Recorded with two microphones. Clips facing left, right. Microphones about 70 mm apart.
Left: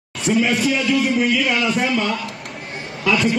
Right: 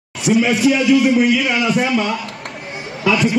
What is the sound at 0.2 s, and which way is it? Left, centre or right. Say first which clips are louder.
A man's voice: right 4 dB; centre.